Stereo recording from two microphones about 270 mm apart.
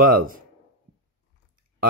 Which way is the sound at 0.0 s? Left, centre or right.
Right.